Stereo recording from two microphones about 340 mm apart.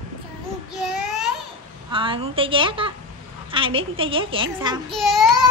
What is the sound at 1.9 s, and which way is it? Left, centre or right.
A woman's voice, centre.